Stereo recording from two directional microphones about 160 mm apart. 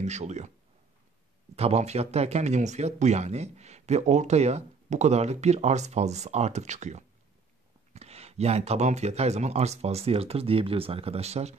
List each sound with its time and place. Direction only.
0.0 s speech: 45° right (ahead or behind)
1.5 s speech: 40° right (ahead or behind)